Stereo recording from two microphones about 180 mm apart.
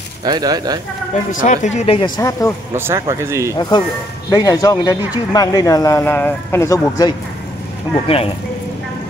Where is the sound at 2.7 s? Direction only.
15° right (ahead or behind).